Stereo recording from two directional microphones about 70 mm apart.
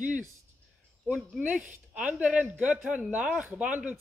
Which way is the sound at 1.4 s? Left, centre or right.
Centre.